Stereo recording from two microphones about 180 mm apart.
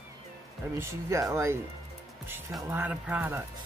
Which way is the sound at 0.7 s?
15° right (ahead or behind).